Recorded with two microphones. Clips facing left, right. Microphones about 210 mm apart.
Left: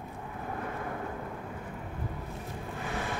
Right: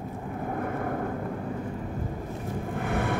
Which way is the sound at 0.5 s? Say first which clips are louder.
Right 7 dB; 50° right (ahead or behind).